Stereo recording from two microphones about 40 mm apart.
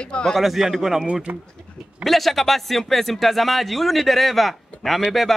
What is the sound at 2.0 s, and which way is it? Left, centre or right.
A man's voice, centre.